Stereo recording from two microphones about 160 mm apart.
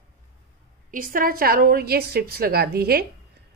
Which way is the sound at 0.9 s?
60° right (ahead or behind).